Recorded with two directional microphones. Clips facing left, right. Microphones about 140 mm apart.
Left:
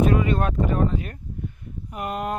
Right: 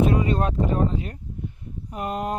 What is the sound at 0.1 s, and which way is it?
Speech, 30° right (ahead or behind).